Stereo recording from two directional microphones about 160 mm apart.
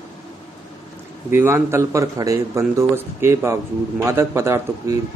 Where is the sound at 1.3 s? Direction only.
15° right (ahead or behind).